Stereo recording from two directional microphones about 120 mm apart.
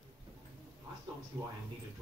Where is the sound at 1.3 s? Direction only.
35° right (ahead or behind).